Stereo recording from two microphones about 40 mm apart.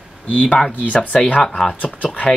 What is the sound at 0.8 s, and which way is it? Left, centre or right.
Speech, left.